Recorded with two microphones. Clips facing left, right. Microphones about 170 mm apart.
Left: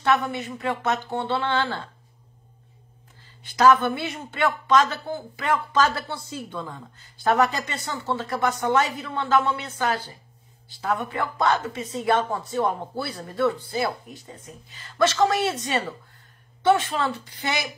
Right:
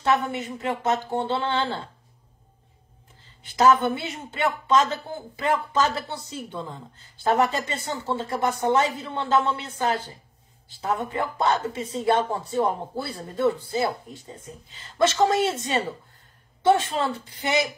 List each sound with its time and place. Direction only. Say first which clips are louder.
0.0 s a woman's voice: even; 25° right (ahead or behind)
3.5 s a woman's voice: left 1 dB; 25° right (ahead or behind)